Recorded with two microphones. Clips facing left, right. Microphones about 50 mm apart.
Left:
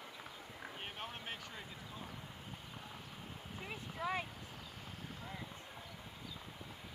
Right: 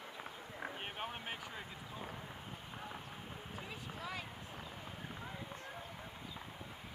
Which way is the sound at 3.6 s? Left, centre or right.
Left.